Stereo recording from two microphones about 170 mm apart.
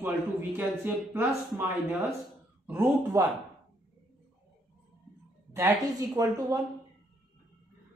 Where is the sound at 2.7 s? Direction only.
15° right (ahead or behind).